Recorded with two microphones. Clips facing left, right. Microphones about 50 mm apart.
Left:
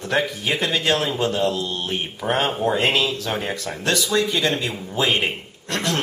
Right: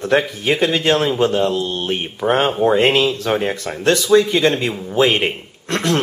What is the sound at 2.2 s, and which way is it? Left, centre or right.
Speech, centre.